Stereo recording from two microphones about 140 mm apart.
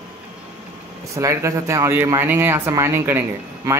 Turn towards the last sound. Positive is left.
turn(degrees=-15)  # may be behind; listen again after turning